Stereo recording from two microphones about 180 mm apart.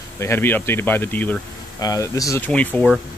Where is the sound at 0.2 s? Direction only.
10° left (ahead or behind).